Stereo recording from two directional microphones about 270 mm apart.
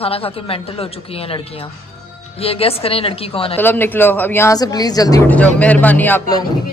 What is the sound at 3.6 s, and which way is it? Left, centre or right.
A woman's voice, centre.